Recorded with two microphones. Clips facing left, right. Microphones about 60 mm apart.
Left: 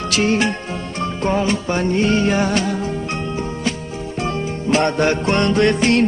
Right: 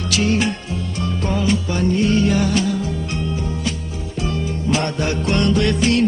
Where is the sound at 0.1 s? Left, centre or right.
Left.